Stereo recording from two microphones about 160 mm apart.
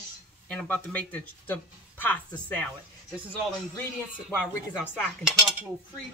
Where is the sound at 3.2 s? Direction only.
10° left (ahead or behind).